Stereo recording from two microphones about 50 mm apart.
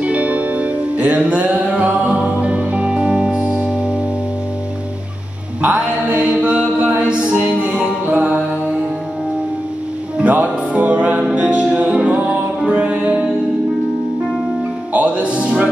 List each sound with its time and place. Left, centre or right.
0.0 s music: right
6.3 s mantra: right
7.1 s music: right
10.2 s music: right
14.9 s music: right